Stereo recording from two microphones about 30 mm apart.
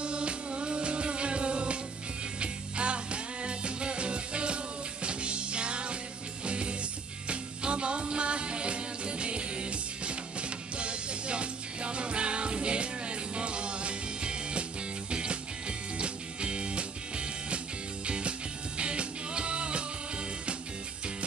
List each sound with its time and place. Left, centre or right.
0.0 s music: right